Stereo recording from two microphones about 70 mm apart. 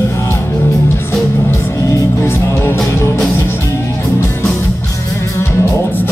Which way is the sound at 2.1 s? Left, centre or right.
Left.